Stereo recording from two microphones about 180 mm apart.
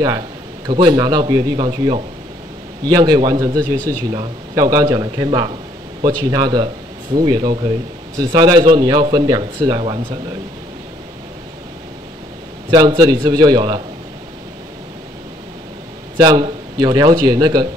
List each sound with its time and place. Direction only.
0.7 s speech: 20° right (ahead or behind)
12.7 s speech: 25° right (ahead or behind)
16.2 s speech: 25° right (ahead or behind)